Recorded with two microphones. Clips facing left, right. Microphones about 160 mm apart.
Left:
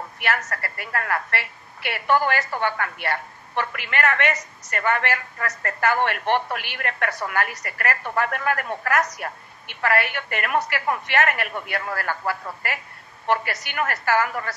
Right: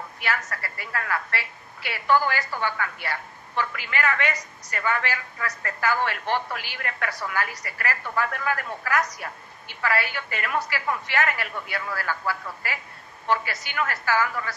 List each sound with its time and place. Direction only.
0.2 s a woman's voice: 50° left (ahead or behind)
13.3 s a woman's voice: 65° left (ahead or behind); by 14.5 s 50° left (ahead or behind)